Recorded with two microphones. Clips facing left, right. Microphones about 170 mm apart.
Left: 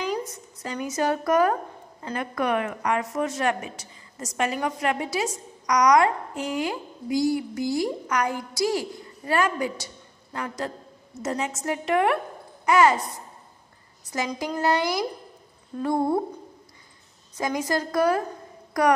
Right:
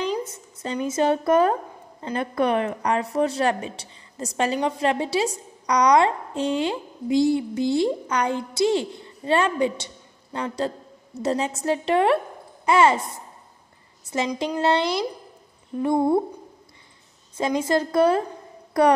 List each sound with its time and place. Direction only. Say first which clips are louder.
0.2 s a woman's voice: right 3 dB; 25° right (ahead or behind)
15.7 s humming: right 3 dB; 20° right (ahead or behind)
17.4 s a woman's voice: right 4 dB; 25° right (ahead or behind)